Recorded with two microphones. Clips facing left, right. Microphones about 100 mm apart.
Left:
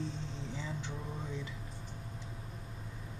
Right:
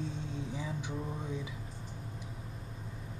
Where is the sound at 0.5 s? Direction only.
10° right (ahead or behind).